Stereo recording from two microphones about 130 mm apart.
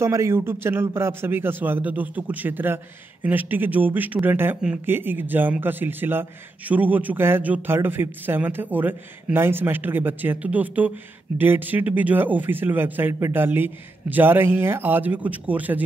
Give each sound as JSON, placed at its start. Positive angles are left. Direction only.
{"t": 0.0, "sound": "a man's voice", "side_deg": -20}